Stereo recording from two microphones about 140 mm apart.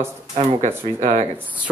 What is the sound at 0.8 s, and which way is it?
Speech, 50° right (ahead or behind).